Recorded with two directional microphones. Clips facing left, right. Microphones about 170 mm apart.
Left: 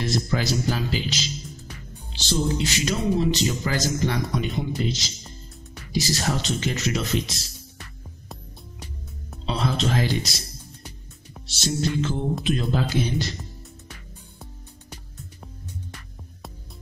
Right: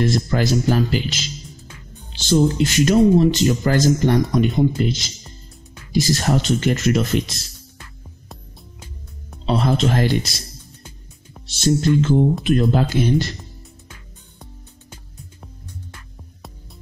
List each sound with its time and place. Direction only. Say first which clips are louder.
0.0 s speech: right 6 dB; 55° right (ahead or behind)
9.5 s music: right 6 dB; 55° right (ahead or behind)
11.4 s music: right 8 dB; 55° right (ahead or behind)